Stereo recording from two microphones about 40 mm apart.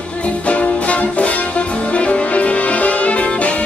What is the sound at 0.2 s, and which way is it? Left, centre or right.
Music, left.